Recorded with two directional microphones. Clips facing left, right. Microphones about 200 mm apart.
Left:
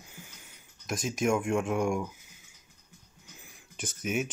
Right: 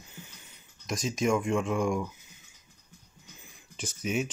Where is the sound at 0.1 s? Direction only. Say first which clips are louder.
Right 1 dB; 10° left (ahead or behind).